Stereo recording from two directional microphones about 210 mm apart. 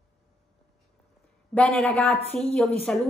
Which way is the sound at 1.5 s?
Centre (ahead or behind).